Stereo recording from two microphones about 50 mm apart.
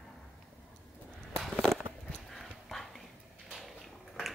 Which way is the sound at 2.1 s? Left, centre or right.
Centre.